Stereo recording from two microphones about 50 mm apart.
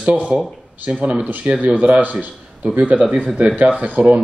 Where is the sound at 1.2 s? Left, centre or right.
Right.